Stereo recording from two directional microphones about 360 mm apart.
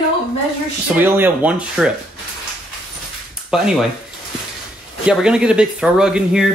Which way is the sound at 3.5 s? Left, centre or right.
Centre.